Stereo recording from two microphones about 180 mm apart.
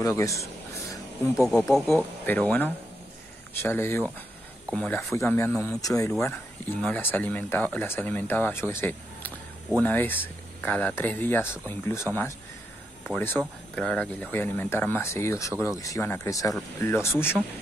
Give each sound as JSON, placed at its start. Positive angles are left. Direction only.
{"t": 0.0, "sound": "speech", "side_deg": 15}
{"t": 1.5, "sound": "speech", "side_deg": 5}